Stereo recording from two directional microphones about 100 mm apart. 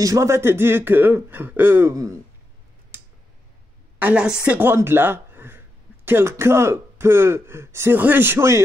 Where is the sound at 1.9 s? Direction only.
35° right (ahead or behind).